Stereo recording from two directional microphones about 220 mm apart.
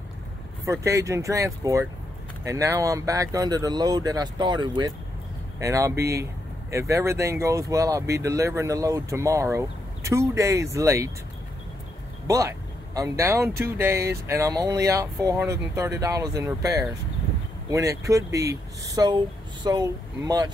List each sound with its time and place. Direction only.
0.7 s speech: 15° right (ahead or behind)
12.3 s speech: 15° right (ahead or behind)